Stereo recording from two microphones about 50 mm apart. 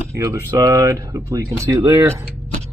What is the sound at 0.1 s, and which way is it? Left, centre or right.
Speech, right.